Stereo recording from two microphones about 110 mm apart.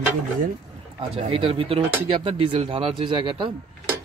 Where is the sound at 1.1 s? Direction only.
55° right (ahead or behind).